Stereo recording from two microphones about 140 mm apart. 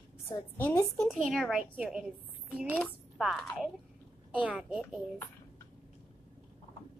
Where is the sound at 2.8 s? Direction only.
Centre (ahead or behind).